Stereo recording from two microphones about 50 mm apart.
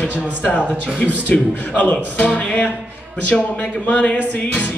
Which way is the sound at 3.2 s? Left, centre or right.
Left.